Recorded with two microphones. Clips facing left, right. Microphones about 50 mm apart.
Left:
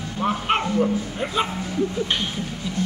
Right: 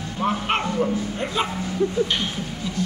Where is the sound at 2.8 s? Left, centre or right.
Left.